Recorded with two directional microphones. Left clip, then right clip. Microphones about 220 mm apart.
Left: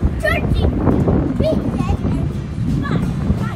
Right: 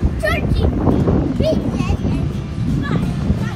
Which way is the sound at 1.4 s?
Centre (ahead or behind).